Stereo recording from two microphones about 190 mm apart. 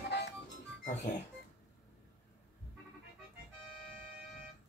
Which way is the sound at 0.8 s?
40° left (ahead or behind).